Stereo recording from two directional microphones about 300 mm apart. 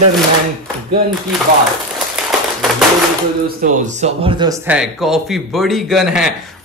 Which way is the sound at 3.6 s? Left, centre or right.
Right.